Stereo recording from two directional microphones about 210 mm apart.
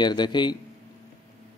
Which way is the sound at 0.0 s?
20° left (ahead or behind).